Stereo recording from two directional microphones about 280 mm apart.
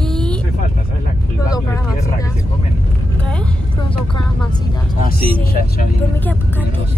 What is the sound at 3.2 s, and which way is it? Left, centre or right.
Vehicle, centre.